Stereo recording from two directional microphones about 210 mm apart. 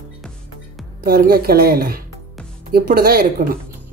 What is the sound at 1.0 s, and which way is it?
Speech, 45° right (ahead or behind).